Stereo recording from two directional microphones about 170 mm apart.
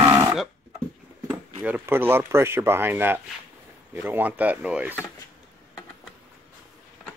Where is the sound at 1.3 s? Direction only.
10° right (ahead or behind).